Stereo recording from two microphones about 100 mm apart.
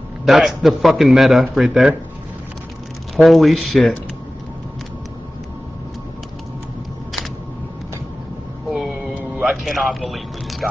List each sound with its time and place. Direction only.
0.2 s a man's voice: 5° right (ahead or behind)
3.2 s a man's voice: centre (ahead or behind)
9.1 s music: 5° right (ahead or behind)